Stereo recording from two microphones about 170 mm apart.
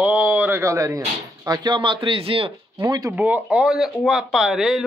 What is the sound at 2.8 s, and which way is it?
Speech, 20° right (ahead or behind).